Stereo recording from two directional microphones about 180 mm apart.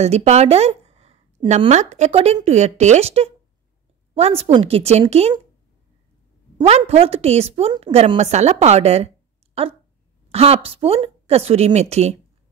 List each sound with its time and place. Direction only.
0.0 s a woman's voice: 35° right (ahead or behind)
6.6 s a woman's voice: 35° right (ahead or behind)
10.3 s a woman's voice: 35° right (ahead or behind)